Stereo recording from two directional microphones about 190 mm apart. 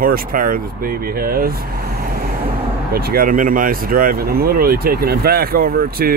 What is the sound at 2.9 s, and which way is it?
Speech, 50° right (ahead or behind).